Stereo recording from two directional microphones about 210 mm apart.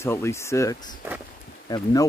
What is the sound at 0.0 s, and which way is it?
Speech, 15° left (ahead or behind).